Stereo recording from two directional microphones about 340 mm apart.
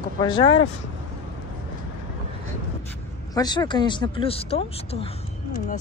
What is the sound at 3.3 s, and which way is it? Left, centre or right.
Speech, centre.